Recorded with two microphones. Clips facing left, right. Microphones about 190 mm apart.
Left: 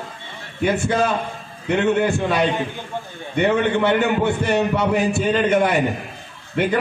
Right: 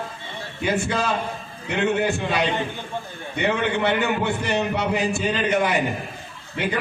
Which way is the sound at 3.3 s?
55° left (ahead or behind).